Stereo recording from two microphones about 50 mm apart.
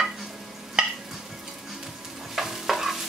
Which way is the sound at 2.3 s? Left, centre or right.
Centre.